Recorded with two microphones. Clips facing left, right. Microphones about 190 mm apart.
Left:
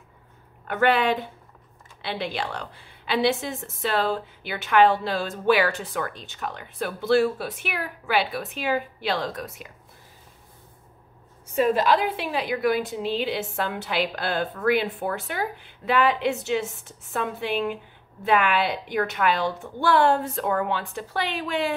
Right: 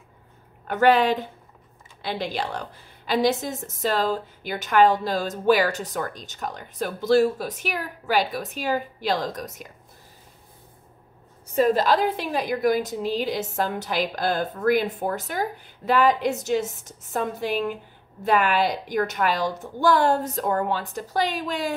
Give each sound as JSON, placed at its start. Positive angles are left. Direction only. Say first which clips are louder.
{"t": 0.7, "sound": "a woman's voice", "louder": "right 3 dB", "side_deg": -40}
{"t": 11.5, "sound": "a woman's voice", "louder": "right 1 dB", "side_deg": -40}